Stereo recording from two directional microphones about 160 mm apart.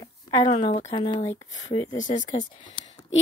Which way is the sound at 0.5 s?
35° left (ahead or behind).